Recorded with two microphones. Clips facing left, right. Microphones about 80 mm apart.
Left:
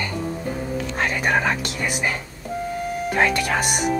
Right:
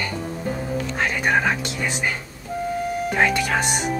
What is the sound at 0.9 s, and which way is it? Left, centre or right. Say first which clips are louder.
Speech: even; centre.